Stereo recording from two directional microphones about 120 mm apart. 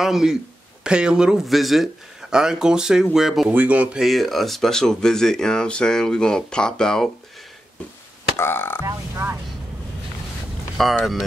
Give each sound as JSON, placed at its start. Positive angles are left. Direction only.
{"t": 0.0, "sound": "speech", "side_deg": -5}
{"t": 8.4, "sound": "speech", "side_deg": 20}
{"t": 8.8, "sound": "speech", "side_deg": -20}
{"t": 10.8, "sound": "speech", "side_deg": 0}